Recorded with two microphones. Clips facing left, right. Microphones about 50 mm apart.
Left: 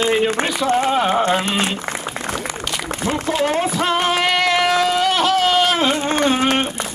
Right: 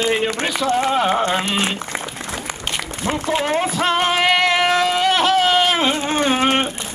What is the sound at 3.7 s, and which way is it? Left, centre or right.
Music, centre.